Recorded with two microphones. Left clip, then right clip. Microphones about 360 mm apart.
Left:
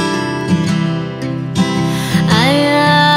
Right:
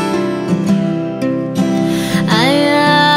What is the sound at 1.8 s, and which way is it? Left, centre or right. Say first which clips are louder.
Music: right 1 dB; centre.